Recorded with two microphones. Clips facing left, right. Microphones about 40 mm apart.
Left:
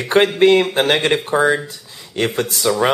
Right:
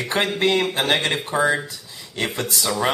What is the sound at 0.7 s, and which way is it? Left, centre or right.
Speech, left.